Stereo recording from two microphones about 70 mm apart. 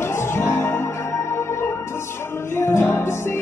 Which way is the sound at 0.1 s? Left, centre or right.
Left.